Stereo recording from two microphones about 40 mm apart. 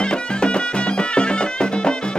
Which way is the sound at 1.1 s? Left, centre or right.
Left.